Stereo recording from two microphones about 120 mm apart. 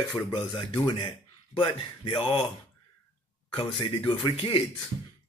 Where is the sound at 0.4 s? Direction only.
55° left (ahead or behind).